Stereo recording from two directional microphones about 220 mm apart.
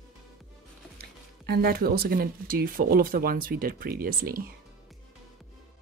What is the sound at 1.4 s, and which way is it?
Speech, 45° right (ahead or behind).